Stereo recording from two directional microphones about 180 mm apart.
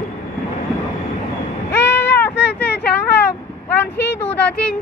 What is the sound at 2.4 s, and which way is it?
Vehicle, 70° left (ahead or behind).